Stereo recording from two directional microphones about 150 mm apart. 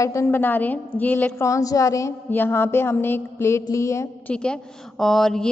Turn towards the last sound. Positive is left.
turn(degrees=0)  # may be behind; listen again after turning